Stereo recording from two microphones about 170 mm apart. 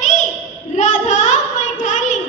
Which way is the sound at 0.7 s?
45° left (ahead or behind).